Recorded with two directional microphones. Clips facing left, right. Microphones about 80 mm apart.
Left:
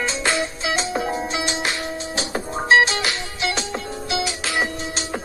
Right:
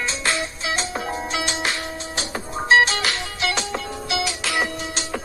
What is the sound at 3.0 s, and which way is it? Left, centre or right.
Music, centre.